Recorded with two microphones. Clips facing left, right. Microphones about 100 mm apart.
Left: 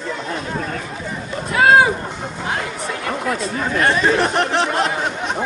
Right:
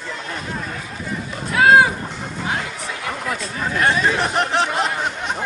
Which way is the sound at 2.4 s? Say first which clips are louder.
Left 2 dB; centre (ahead or behind).